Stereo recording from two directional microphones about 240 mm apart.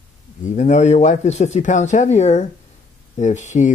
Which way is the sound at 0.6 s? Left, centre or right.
Left.